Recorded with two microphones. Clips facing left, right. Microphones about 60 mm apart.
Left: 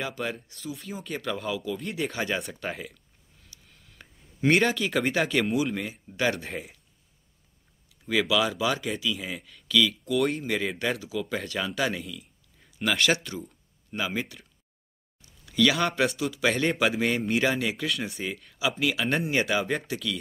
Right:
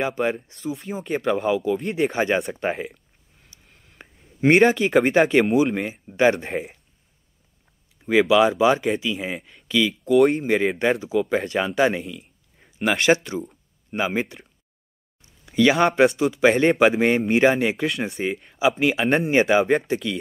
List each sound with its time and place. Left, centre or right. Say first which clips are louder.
0.0 s speech: right 9 dB; right
3.4 s a sound: right 2 dB; right
4.6 s speech: right 11 dB; right
4.8 s speech: right 8 dB; right
8.0 s speech: right 8 dB; right
13.5 s a sound: right 6 dB; right
15.2 s a sound: right 5 dB; right
16.2 s speech: right 8 dB; right
17.8 s speech: right 6 dB; right